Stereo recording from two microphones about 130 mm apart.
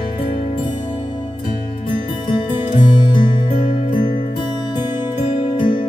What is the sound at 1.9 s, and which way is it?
Music, 40° left (ahead or behind).